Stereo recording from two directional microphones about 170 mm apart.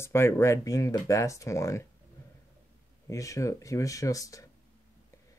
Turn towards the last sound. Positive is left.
turn(degrees=20)  # may be behind; listen again after turning